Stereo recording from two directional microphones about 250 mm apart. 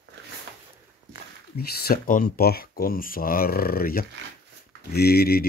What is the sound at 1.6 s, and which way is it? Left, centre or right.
Speech, left.